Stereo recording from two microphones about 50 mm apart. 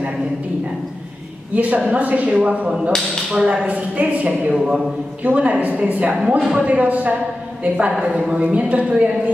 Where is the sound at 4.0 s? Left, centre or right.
Right.